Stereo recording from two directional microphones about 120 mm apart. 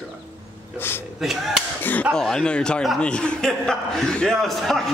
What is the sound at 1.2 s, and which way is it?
Speech, centre (ahead or behind).